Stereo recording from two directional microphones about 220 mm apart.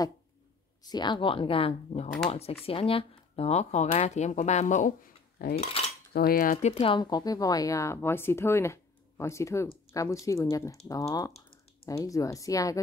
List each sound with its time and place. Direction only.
0.8 s speech: 20° left (ahead or behind); by 5.6 s 40° left (ahead or behind)
5.6 s cutlery: 25° left (ahead or behind)
6.1 s speech: 40° left (ahead or behind); by 12.8 s 15° left (ahead or behind)